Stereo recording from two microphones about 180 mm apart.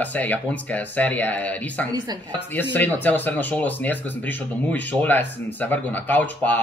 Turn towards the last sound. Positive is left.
turn(degrees=10)  # may be behind; listen again after turning